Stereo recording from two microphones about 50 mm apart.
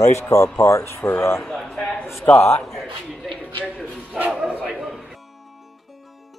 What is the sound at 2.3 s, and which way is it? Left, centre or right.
Speech, left.